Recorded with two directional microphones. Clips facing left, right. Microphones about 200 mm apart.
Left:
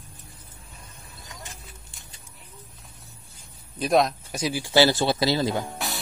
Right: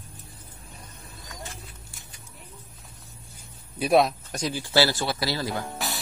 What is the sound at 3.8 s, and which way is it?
Speech, 5° right (ahead or behind).